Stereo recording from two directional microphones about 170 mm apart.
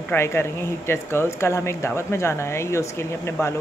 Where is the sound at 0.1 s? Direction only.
15° left (ahead or behind).